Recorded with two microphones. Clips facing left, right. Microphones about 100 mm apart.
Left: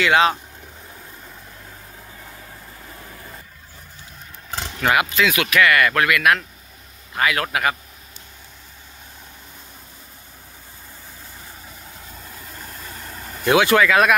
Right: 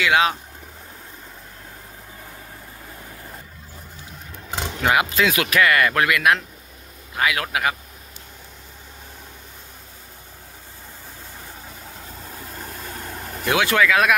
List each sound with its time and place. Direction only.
0.0 s speech: 5° right (ahead or behind)
4.5 s roaring cats: 15° right (ahead or behind)
5.1 s speech: 30° right (ahead or behind)
7.2 s a man's voice: 10° right (ahead or behind)
13.5 s speech: 5° left (ahead or behind)